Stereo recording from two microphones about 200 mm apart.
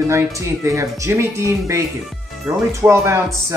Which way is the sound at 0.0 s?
15° right (ahead or behind).